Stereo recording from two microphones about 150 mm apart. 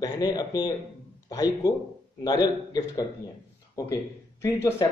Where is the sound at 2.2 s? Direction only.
25° left (ahead or behind).